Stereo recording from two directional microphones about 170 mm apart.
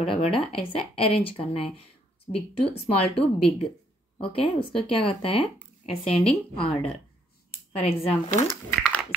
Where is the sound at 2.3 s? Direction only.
25° left (ahead or behind).